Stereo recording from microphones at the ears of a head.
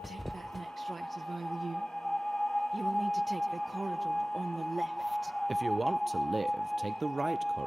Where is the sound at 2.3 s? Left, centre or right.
Centre.